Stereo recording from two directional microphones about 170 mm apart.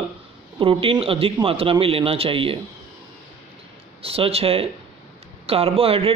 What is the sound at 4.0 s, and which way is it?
Speech, 35° right (ahead or behind).